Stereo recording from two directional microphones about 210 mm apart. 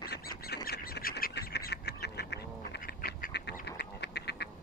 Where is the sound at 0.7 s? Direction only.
45° left (ahead or behind).